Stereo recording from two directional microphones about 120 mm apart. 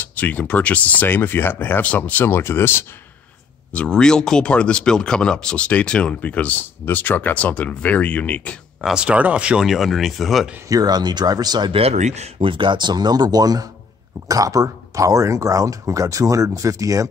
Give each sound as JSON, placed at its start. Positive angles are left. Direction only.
{"t": 0.0, "sound": "speech", "side_deg": 15}
{"t": 3.7, "sound": "speech", "side_deg": 5}
{"t": 8.8, "sound": "speech", "side_deg": -5}
{"t": 10.7, "sound": "speech", "side_deg": -30}
{"t": 11.7, "sound": "speech", "side_deg": -65}
{"t": 12.4, "sound": "speech", "side_deg": -45}